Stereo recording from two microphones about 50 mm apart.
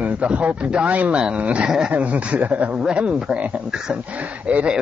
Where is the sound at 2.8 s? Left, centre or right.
Centre.